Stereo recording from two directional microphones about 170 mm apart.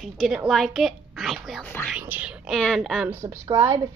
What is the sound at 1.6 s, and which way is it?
Speech, 10° left (ahead or behind).